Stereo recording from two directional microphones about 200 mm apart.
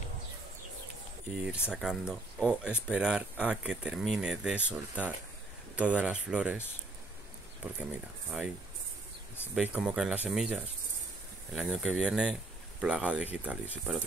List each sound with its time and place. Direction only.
1.4 s speech: 5° right (ahead or behind)
8.3 s speech: 5° right (ahead or behind)
9.6 s speech: 5° right (ahead or behind)